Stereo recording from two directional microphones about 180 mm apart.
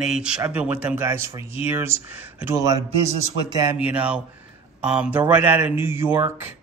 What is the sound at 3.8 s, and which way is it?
Speech, 5° right (ahead or behind).